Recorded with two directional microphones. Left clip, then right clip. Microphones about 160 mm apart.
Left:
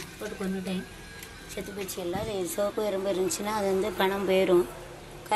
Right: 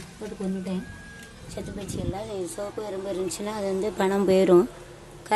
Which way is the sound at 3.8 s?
45° right (ahead or behind).